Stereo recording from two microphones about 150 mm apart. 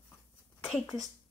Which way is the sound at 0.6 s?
Centre (ahead or behind).